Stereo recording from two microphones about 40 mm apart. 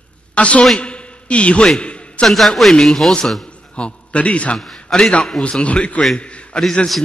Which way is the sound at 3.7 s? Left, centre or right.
Left.